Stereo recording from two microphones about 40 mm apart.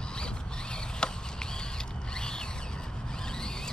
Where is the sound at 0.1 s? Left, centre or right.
Left.